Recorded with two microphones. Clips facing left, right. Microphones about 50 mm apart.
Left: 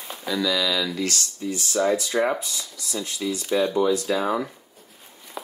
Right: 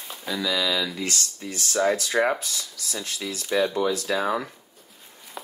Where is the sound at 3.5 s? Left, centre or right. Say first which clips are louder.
Left 2 dB; centre.